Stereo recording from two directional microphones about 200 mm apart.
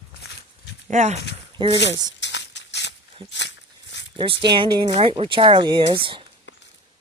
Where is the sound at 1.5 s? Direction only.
25° right (ahead or behind).